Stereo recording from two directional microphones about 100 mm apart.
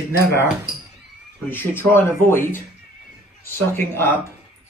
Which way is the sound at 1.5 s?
20° left (ahead or behind).